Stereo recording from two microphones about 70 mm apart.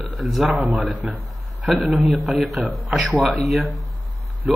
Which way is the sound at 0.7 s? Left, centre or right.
Right.